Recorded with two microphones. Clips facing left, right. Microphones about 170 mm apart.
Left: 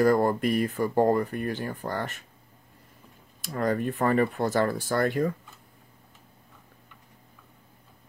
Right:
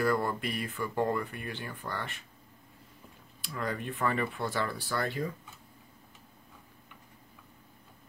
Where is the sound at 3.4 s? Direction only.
45° left (ahead or behind).